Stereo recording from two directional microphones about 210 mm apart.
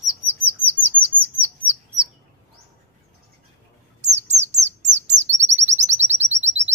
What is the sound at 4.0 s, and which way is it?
Bird, 35° right (ahead or behind).